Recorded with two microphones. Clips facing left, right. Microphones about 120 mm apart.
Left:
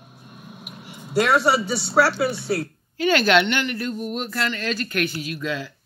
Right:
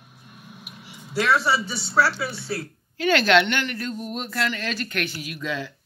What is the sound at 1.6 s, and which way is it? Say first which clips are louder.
Speech: left 3 dB; 70° left (ahead or behind).